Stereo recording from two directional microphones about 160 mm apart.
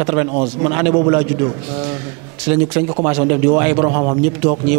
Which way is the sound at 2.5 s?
15° right (ahead or behind).